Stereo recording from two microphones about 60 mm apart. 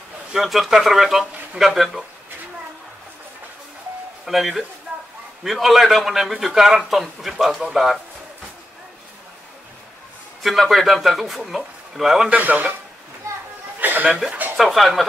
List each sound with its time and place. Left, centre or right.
0.3 s speech: centre
4.3 s speech: centre
10.4 s speech: centre
12.3 s a man's voice: right
13.7 s chuckle: right
14.6 s speech: centre